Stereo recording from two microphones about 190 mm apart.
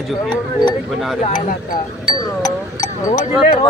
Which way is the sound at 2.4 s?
20° left (ahead or behind).